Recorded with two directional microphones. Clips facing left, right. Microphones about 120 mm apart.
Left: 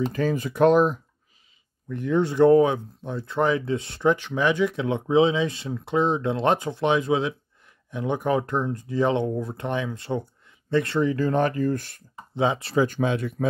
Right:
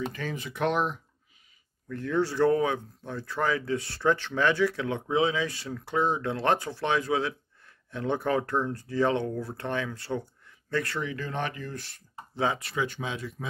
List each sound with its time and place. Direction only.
0.0 s speech: 40° left (ahead or behind)
1.9 s speech: 20° left (ahead or behind)
11.1 s speech: 40° left (ahead or behind)
12.4 s speech: 20° left (ahead or behind)
12.6 s speech: 40° left (ahead or behind); by 13.5 s 55° left (ahead or behind)